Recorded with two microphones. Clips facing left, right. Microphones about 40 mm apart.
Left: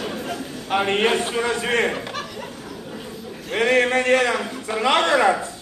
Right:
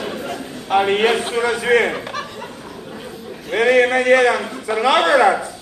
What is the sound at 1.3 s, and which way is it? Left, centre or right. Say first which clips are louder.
Speech: right 6 dB; right.